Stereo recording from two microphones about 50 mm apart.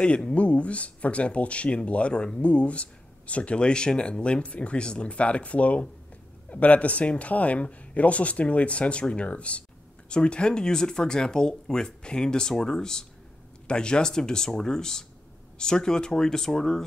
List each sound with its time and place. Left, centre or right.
0.0 s speech: left